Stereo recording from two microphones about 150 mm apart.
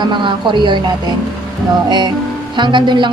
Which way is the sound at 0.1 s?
30° right (ahead or behind).